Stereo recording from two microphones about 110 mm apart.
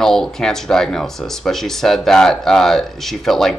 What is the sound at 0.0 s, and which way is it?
Speech, 5° left (ahead or behind).